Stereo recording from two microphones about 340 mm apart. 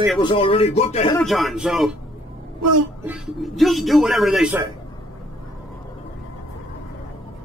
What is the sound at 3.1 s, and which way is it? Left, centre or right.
Speech, centre.